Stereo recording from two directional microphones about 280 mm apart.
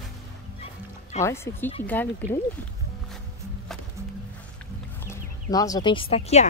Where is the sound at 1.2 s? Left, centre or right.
Centre.